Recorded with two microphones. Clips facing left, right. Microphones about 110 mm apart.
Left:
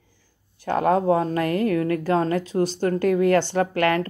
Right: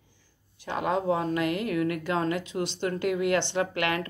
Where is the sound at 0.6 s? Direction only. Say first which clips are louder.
Left 7 dB; 45° left (ahead or behind).